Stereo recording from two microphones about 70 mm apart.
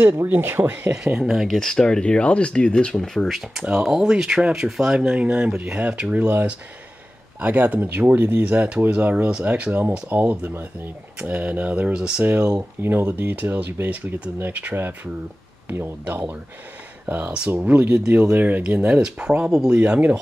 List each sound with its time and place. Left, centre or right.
0.0 s speech: right
1.0 s speech: centre
1.6 s speech: centre
12.8 s speech: right
17.0 s speech: right
17.5 s speech: right
17.7 s speech: centre